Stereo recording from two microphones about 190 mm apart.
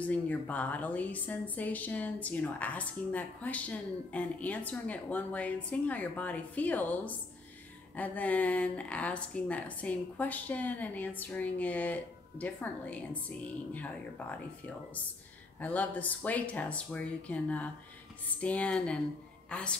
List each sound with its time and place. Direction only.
0.0 s a woman's voice: 5° left (ahead or behind)
15.6 s a woman's voice: 10° left (ahead or behind)